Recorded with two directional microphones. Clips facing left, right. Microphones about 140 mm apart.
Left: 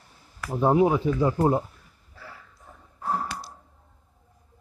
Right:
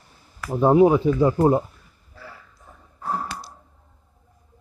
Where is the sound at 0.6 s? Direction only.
30° right (ahead or behind).